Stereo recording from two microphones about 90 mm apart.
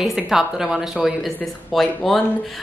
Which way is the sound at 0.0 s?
5° right (ahead or behind).